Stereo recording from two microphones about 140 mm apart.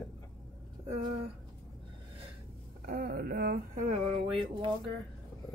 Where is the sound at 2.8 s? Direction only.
85° right.